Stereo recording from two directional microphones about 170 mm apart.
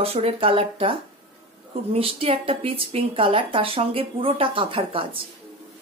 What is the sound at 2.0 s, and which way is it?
A woman's voice, 35° right (ahead or behind).